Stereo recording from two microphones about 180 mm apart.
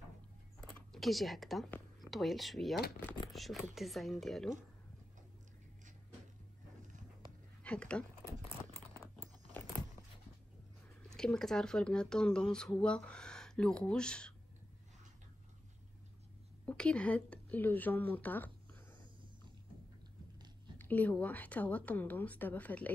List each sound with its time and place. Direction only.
0.6 s a sound: centre (ahead or behind)
2.0 s speech: centre (ahead or behind)
3.3 s a sound: centre (ahead or behind)
3.7 s speech: centre (ahead or behind)
7.6 s speech: 5° left (ahead or behind)
8.6 s a sound: 15° left (ahead or behind)
11.1 s speech: 5° left (ahead or behind)
16.6 s speech: 5° left (ahead or behind)
20.7 s a woman's voice: 10° left (ahead or behind)